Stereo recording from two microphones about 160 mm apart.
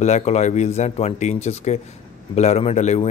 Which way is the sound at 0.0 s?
45° left (ahead or behind).